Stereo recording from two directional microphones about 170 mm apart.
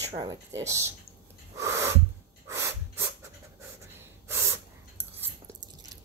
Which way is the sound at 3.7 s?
15° right (ahead or behind).